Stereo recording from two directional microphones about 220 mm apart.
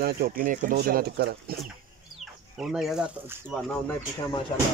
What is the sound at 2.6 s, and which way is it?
Speech, centre (ahead or behind).